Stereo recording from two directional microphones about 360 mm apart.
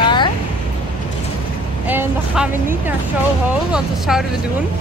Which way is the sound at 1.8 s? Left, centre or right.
Centre.